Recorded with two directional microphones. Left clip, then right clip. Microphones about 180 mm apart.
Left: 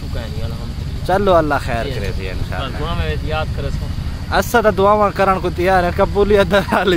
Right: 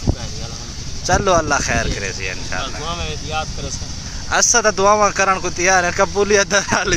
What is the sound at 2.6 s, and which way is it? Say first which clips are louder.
Speech: left 1 dB; 20° right (ahead or behind).